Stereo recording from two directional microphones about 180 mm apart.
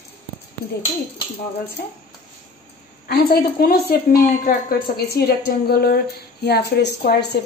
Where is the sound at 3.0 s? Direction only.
60° left (ahead or behind).